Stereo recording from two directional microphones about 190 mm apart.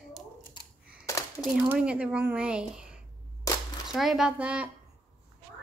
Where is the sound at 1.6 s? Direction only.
5° right (ahead or behind).